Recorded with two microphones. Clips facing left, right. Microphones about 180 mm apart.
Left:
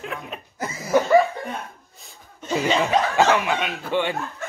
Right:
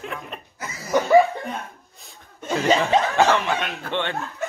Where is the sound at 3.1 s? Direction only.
10° left (ahead or behind).